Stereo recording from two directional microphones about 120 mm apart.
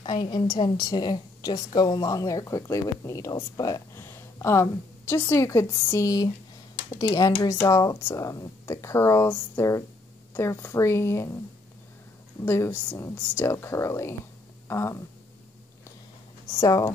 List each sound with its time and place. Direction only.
0.0 s a woman's voice: 40° left (ahead or behind); by 11.3 s 25° left (ahead or behind)
12.4 s a woman's voice: 20° left (ahead or behind)
14.7 s a sound: 25° left (ahead or behind)
16.5 s a woman's voice: 25° left (ahead or behind)